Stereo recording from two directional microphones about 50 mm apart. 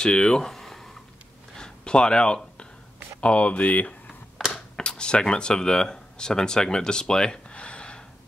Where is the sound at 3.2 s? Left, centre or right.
Left.